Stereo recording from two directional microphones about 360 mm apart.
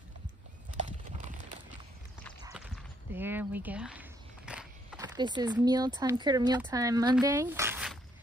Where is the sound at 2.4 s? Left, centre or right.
Centre.